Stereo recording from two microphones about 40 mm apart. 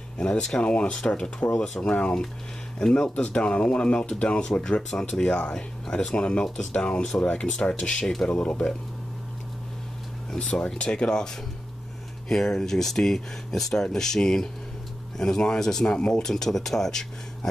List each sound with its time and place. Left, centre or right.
0.2 s speech: left
1.5 s speech: centre
1.8 s speech: left; by 8.4 s centre
8.4 s speech: left
10.3 s speech: left
12.3 s speech: centre